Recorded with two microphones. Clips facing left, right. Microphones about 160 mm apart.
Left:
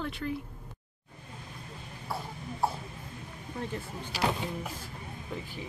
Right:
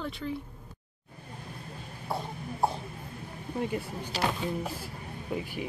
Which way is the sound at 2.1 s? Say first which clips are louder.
Right 3 dB; 25° right (ahead or behind).